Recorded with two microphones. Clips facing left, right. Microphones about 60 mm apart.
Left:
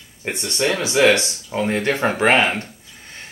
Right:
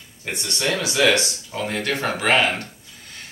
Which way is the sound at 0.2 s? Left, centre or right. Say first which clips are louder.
Left 4 dB; left.